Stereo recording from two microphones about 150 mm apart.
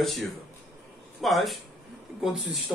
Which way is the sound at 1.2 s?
Centre (ahead or behind).